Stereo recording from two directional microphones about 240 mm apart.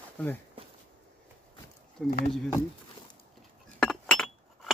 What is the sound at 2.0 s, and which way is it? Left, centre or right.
Speech, centre.